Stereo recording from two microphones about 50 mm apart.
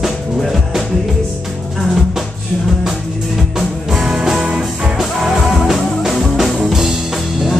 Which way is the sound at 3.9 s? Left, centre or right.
Centre.